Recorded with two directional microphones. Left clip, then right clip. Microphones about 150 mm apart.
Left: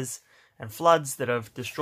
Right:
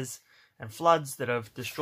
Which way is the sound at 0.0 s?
15° left (ahead or behind).